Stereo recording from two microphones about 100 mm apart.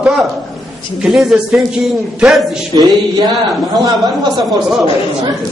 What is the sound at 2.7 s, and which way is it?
A man's voice, 45° right (ahead or behind).